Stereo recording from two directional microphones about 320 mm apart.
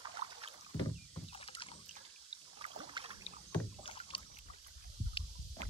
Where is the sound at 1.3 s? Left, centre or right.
Centre.